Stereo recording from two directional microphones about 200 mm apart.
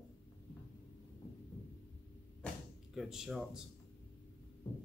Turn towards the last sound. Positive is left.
turn(degrees=0)  # may be behind; listen again after turning